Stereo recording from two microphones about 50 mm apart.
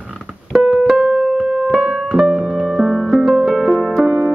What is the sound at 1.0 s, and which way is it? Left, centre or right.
Music, right.